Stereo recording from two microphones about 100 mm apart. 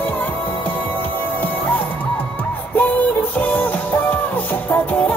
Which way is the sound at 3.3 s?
15° left (ahead or behind).